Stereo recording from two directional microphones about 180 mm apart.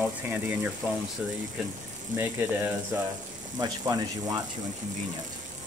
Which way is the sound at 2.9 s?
10° right (ahead or behind).